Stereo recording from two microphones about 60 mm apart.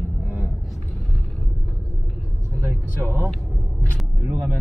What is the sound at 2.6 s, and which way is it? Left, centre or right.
Speech, right.